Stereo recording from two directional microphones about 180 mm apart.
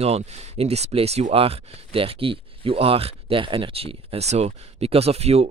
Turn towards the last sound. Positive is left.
turn(degrees=-35)  # may be behind; listen again after turning